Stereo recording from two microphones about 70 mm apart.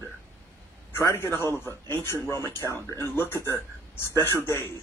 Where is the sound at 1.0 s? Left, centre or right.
Left.